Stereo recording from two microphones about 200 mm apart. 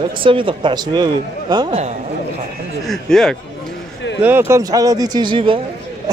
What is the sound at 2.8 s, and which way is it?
Speech, centre (ahead or behind).